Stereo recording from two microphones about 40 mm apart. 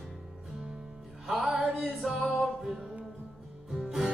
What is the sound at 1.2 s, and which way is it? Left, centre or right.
Music, centre.